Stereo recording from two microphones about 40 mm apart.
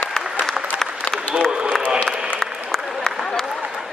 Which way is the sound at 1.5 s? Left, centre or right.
Right.